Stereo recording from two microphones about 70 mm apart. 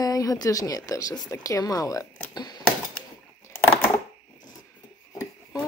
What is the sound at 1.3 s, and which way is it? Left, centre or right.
Speech, left.